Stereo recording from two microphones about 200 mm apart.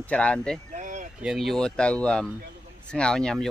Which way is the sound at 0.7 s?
40° right (ahead or behind).